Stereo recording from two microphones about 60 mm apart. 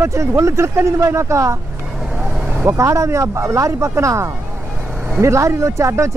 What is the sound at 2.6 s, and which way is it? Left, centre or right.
Speech, right.